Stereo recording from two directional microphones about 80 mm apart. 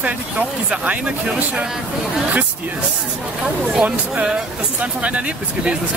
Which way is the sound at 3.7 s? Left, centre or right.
Centre.